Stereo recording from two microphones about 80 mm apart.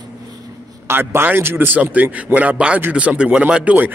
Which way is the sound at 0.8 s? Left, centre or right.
Right.